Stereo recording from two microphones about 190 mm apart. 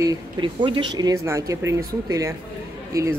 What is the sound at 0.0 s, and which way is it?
Speech, 20° right (ahead or behind).